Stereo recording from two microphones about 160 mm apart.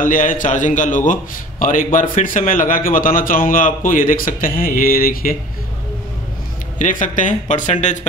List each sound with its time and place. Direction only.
0.0 s a man's voice: 55° left (ahead or behind)
6.8 s speech: 55° left (ahead or behind)